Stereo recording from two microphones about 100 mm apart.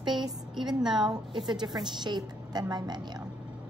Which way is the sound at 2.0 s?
45° right (ahead or behind).